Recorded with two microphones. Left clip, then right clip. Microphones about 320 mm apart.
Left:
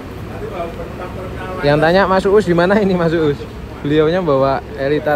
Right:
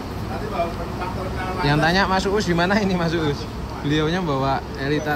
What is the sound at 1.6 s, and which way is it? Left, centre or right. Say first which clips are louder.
Speech: left 7 dB; centre.